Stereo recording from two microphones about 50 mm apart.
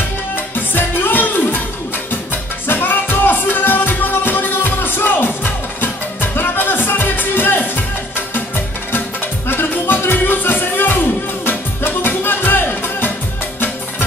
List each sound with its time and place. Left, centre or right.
0.7 s music: left
2.7 s music: left
9.5 s music: left